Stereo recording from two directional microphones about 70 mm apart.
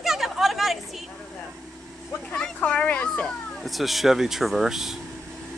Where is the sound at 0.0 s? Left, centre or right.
Centre.